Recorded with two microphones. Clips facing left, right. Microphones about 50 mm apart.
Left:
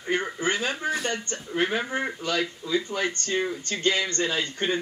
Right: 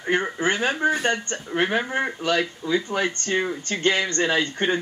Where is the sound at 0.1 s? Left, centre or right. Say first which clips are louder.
Right 3 dB; right.